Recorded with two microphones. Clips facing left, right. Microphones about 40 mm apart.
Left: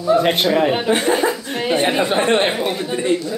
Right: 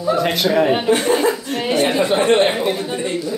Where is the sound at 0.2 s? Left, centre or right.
Left.